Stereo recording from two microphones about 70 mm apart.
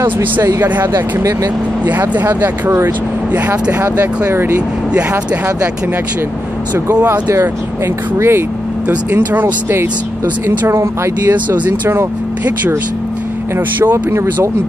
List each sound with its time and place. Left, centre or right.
0.0 s speech: right
0.9 s speech: right
1.9 s speech: right
3.9 s speech: right
4.3 s speech: right
7.1 s speech: right
8.8 s speech: right
13.9 s speech: right